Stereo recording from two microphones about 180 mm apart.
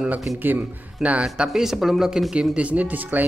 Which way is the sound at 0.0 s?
5° right (ahead or behind).